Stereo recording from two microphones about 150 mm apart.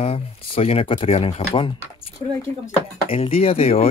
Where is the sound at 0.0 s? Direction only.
45° left (ahead or behind).